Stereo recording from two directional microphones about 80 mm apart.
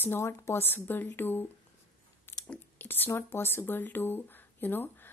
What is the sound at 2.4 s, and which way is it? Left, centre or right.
Whispering, left.